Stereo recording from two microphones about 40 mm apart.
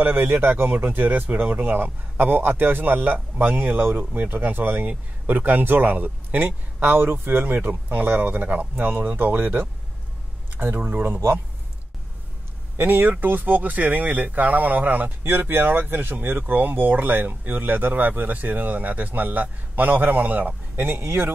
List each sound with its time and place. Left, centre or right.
0.0 s speech: right
12.7 s speech: right
20.7 s speech: right